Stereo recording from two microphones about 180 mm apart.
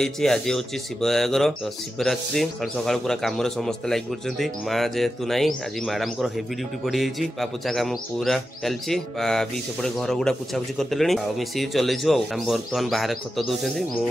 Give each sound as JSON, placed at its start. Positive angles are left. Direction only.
{"t": 0.0, "sound": "a man's voice", "side_deg": 5}